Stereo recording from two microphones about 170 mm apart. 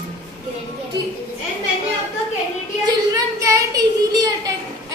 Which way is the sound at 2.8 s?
20° right (ahead or behind).